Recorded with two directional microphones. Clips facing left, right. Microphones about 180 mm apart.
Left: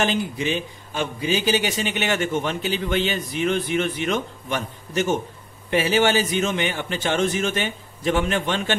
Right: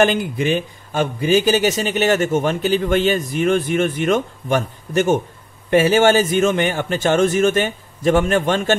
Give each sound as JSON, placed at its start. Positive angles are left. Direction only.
{"t": 0.0, "sound": "speech", "side_deg": -55}